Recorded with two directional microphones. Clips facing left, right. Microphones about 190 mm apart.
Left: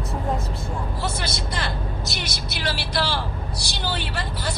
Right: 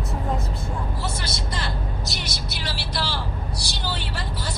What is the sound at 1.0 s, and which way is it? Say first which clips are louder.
Speech: left 2 dB; 60° left (ahead or behind).